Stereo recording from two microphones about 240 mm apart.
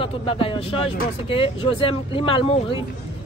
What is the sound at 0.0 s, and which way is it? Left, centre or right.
A woman's voice, left.